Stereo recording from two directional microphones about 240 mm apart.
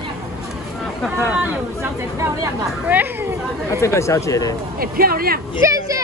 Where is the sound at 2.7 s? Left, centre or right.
Centre.